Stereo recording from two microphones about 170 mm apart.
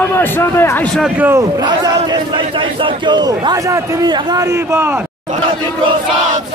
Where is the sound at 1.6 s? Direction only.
25° right (ahead or behind).